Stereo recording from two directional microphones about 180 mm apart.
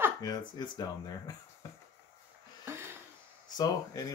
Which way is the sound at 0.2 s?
25° left (ahead or behind).